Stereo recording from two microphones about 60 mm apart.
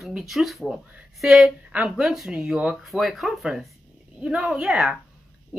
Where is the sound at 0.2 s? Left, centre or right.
Centre.